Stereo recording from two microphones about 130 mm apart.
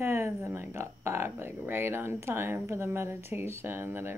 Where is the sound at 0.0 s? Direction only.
20° right (ahead or behind).